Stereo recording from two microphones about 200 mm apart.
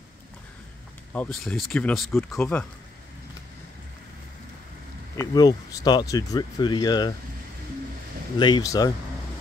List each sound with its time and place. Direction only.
1.1 s speech: 5° left (ahead or behind)
5.1 s speech: 15° left (ahead or behind)
8.4 s speech: 20° left (ahead or behind)